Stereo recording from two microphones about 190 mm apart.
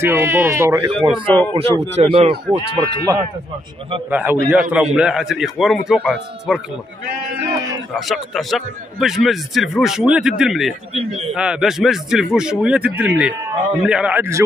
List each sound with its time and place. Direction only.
0.0 s speech: 15° right (ahead or behind)
1.2 s speech: 10° left (ahead or behind)
1.5 s a man's voice: 30° right (ahead or behind)
4.1 s a man's voice: 10° right (ahead or behind)
8.1 s a man's voice: centre (ahead or behind)